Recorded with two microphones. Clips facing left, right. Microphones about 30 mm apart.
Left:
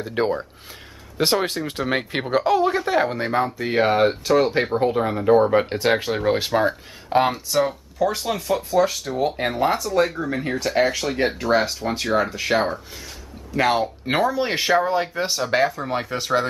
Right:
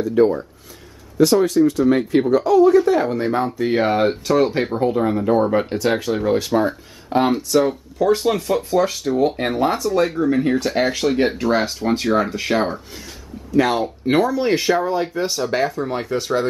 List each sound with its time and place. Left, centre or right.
0.1 s speech: left; by 3.3 s centre
3.3 s speech: centre
7.2 s speech: centre
13.6 s speech: centre